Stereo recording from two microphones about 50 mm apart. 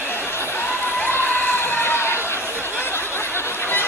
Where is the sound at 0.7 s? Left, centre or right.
Left.